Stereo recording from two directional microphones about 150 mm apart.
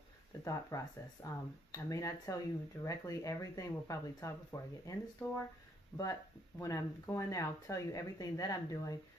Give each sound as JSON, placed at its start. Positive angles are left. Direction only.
{"t": 0.4, "sound": "speech", "side_deg": 20}